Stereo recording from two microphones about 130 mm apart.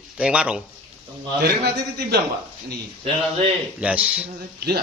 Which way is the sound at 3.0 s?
50° right (ahead or behind).